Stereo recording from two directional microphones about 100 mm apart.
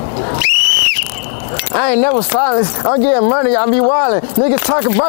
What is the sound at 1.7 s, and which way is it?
Speech, 20° left (ahead or behind).